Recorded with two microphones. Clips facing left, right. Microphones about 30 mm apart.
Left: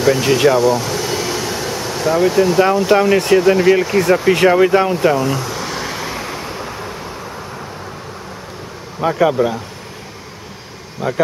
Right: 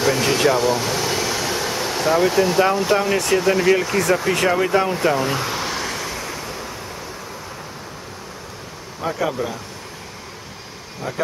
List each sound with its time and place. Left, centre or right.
0.0 s speech: centre
0.6 s air conditioning: centre
2.9 s speech: centre
5.1 s speech: centre
5.4 s a sound: centre
5.7 s vehicle: centre
9.0 s speech: left
11.0 s speech: left